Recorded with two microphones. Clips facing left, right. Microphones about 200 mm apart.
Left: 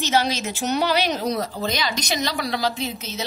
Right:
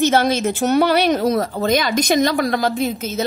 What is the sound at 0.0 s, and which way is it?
A woman's voice, 55° right (ahead or behind).